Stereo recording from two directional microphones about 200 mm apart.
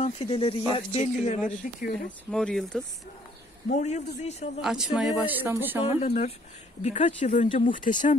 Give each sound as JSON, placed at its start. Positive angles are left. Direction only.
{"t": 0.0, "sound": "speech", "side_deg": 25}
{"t": 2.3, "sound": "speech", "side_deg": 5}
{"t": 3.7, "sound": "speech", "side_deg": 35}
{"t": 4.6, "sound": "speech", "side_deg": -5}
{"t": 5.9, "sound": "speech", "side_deg": 30}